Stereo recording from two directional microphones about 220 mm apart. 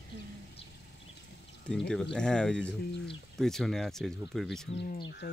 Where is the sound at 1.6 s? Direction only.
5° left (ahead or behind).